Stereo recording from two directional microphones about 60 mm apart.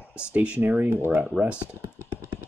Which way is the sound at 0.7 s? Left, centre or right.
Right.